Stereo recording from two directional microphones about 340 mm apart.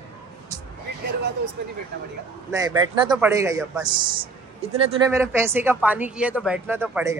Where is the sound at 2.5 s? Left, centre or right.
Centre.